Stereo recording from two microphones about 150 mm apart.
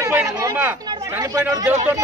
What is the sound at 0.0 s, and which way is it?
Chatter, 20° right (ahead or behind).